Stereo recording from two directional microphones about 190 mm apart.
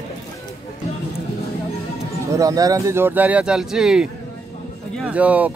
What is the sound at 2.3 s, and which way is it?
Speech, 20° right (ahead or behind).